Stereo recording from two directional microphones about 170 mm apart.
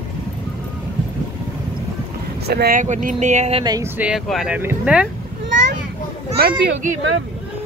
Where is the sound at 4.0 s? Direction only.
5° right (ahead or behind).